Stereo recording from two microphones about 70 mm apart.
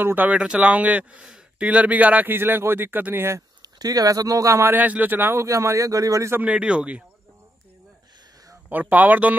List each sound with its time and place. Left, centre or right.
0.0 s a man's voice: right
0.4 s a man's voice: centre
3.6 s speech: right
4.6 s a man's voice: right
5.4 s speech: right
6.4 s speech: centre
8.6 s a man's voice: right